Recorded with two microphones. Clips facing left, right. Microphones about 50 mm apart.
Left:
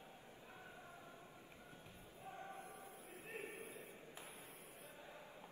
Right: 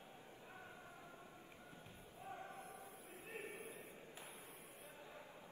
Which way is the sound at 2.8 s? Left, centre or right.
Left.